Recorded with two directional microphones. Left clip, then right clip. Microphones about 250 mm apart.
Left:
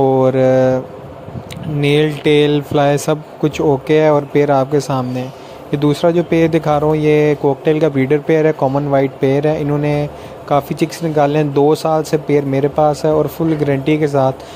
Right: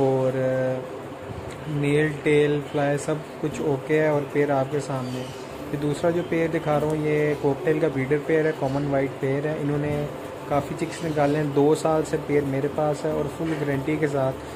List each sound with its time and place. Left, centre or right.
0.2 s speech: left
1.8 s speech: left